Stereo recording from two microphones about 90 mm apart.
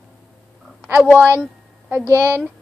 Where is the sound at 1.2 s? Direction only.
20° right (ahead or behind).